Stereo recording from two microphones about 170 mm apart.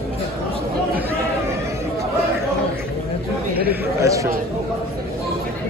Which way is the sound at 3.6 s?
15° right (ahead or behind).